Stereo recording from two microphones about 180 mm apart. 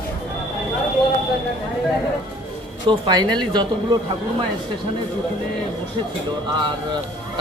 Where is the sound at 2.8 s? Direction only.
25° right (ahead or behind).